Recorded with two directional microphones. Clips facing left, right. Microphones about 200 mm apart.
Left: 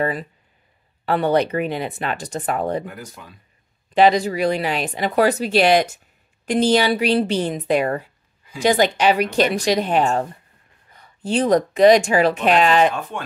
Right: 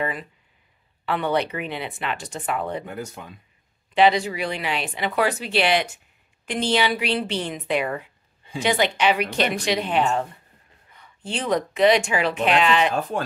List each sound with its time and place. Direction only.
0.0 s speech: 40° left (ahead or behind)
2.8 s speech: 25° right (ahead or behind)
3.9 s speech: 40° left (ahead or behind)